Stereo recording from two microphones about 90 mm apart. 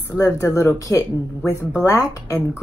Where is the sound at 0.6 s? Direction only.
35° left (ahead or behind).